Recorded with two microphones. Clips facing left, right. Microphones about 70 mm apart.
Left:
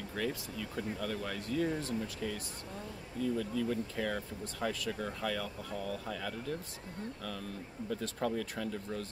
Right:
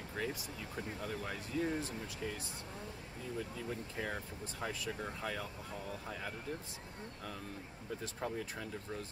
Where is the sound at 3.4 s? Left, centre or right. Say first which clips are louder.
Left 7 dB; right.